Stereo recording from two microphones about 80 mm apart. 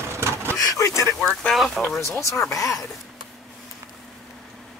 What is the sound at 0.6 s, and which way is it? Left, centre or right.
Speech, left.